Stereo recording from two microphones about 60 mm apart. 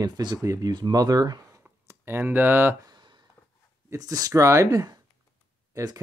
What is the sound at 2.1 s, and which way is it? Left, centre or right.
Speech, right.